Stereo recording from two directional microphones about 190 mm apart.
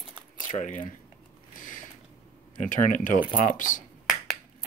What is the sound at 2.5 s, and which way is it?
Speech, 45° left (ahead or behind).